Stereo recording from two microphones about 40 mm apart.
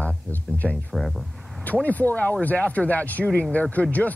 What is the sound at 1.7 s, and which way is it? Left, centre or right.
Speech, left.